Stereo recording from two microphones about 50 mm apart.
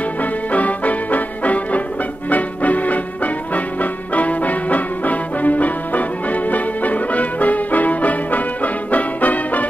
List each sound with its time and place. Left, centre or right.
0.2 s music: left